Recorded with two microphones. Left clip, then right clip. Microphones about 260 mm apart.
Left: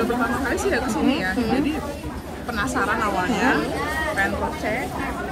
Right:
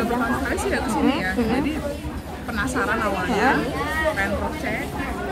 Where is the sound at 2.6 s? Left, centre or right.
Centre.